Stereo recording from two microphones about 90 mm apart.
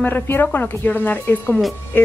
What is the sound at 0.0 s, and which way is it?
Speech, 20° left (ahead or behind).